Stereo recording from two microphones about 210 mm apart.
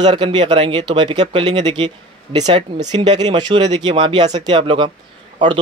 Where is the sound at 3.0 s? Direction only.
20° right (ahead or behind).